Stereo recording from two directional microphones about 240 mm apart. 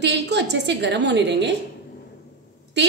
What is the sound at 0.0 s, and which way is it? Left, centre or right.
A woman's voice, right.